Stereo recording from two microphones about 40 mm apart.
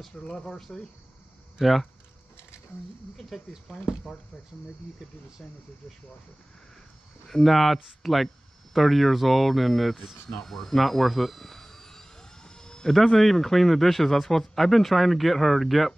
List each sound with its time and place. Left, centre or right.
0.1 s speech: centre
1.6 s speech: centre
3.2 s speech: centre
5.4 s speech: left
7.2 s speech: centre
10.4 s a sound: centre
12.8 s speech: centre